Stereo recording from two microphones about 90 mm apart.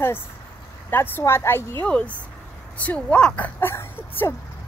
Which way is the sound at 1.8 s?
15° left (ahead or behind).